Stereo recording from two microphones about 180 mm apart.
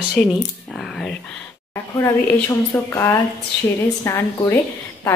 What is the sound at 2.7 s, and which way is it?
A woman's voice, 15° left (ahead or behind).